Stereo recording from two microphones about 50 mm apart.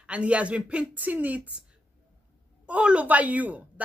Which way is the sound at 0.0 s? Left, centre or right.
Right.